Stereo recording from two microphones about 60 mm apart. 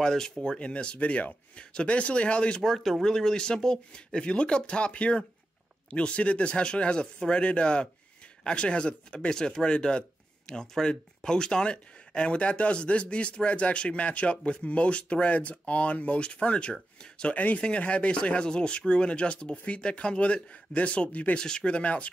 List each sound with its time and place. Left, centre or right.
0.0 s speech: centre
2.6 s speech: centre; by 22.1 s left